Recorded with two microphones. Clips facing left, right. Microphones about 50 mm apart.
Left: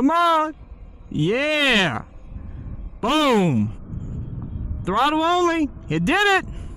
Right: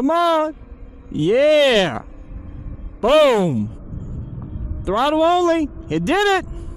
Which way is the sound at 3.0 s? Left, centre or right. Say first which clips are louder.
Right 5 dB; centre.